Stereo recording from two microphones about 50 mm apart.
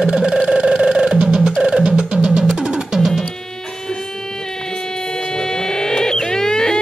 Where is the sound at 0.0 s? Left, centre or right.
Centre.